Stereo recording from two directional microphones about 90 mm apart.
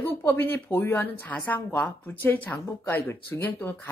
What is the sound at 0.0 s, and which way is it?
A woman's voice, 25° left (ahead or behind).